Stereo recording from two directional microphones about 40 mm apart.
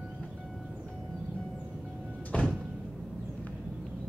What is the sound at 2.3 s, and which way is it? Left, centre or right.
Door, left.